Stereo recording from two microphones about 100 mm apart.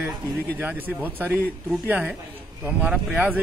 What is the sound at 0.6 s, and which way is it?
A man's voice, 20° right (ahead or behind).